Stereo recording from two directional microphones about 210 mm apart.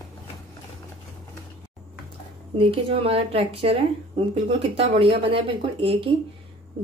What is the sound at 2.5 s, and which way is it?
Speech, 25° right (ahead or behind).